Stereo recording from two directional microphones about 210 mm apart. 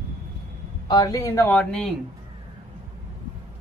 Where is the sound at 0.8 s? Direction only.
20° left (ahead or behind).